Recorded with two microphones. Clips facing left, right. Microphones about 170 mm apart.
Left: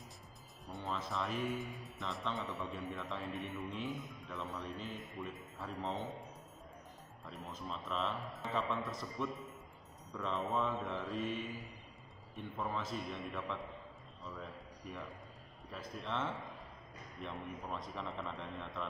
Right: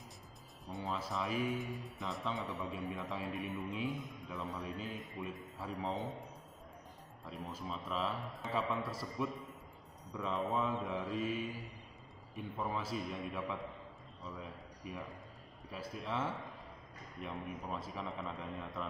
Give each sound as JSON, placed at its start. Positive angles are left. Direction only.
{"t": 0.7, "sound": "speech", "side_deg": 0}
{"t": 7.2, "sound": "a man's voice", "side_deg": -5}